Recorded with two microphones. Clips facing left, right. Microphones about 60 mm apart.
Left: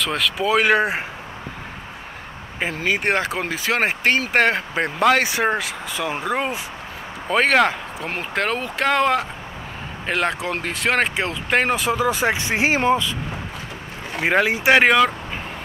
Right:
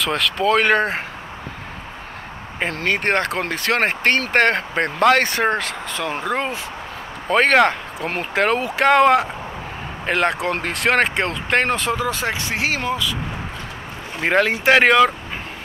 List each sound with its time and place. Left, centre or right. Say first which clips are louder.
0.0 s speech: right 2 dB; centre
2.6 s speech: right 1 dB; centre; by 13.1 s left
14.2 s speech: right 1 dB; centre